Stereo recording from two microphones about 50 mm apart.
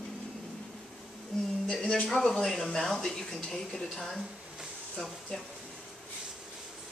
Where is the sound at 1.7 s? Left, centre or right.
Centre.